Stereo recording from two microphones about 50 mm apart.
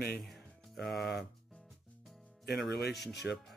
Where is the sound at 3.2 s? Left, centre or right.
Right.